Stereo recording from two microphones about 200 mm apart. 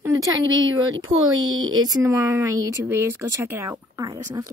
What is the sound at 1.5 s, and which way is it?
Speech, 90° right.